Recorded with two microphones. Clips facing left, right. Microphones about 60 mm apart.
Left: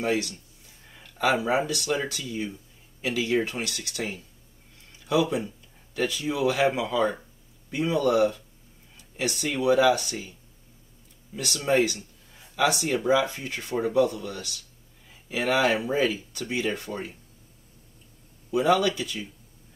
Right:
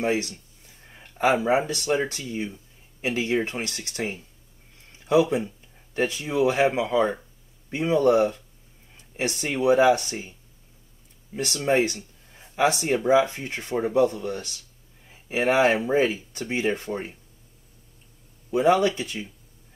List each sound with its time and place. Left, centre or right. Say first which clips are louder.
0.0 s speech: right 1 dB; right
5.0 s speech: right 4 dB; right
8.9 s a sound: right 2 dB; right
9.6 s speech: right 2 dB; right
11.3 s speech: right 1 dB; right
18.5 s speech: right 2 dB; right